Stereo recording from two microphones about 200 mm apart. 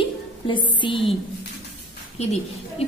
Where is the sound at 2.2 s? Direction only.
30° left (ahead or behind).